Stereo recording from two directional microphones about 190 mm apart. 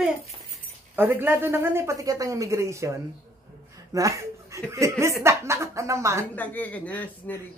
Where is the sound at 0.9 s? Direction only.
10° right (ahead or behind).